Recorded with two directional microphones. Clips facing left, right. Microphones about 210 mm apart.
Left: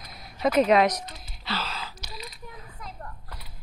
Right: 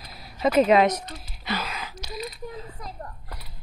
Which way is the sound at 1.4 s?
15° right (ahead or behind).